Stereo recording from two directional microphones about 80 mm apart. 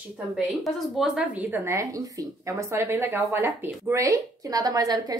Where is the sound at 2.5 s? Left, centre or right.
Right.